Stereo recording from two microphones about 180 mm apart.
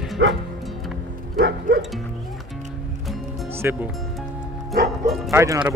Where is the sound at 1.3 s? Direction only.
65° right (ahead or behind).